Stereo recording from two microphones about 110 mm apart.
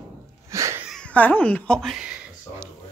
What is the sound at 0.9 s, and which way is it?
Speech, 10° left (ahead or behind).